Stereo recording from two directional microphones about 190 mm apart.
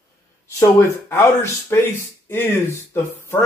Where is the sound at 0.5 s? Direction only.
15° left (ahead or behind).